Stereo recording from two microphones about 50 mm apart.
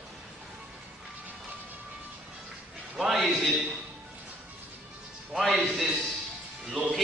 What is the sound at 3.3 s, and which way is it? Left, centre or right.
Speech, centre.